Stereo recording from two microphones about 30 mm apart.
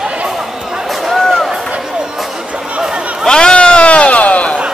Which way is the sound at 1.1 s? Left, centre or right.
Centre.